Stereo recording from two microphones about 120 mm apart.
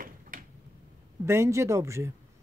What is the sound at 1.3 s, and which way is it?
Speech, 25° right (ahead or behind).